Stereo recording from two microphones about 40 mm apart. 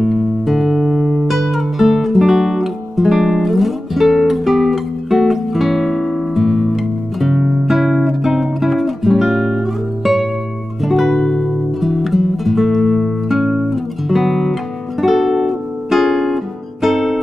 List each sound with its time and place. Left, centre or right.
0.0 s music: centre
11.2 s music: centre
11.5 s music: centre